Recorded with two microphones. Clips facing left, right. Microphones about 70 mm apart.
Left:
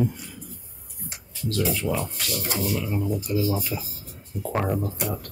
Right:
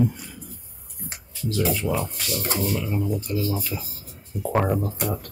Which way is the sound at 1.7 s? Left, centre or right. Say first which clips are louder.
Right 1 dB; centre.